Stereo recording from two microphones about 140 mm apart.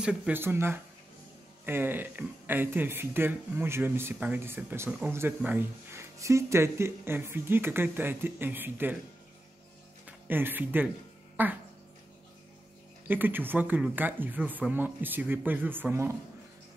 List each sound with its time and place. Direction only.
0.0 s speech: 10° right (ahead or behind)
10.0 s speech: 15° right (ahead or behind)
13.1 s speech: 15° right (ahead or behind)